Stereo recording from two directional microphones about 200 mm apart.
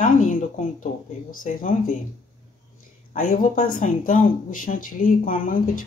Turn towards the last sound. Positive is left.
turn(degrees=40)  # may be behind; listen again after turning